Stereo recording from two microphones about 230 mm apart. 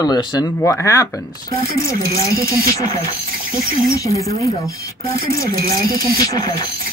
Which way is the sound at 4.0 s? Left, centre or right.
Centre.